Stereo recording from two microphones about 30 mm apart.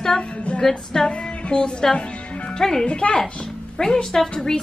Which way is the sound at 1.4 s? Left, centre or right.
Left.